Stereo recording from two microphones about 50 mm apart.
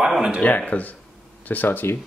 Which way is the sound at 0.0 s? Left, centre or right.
Centre.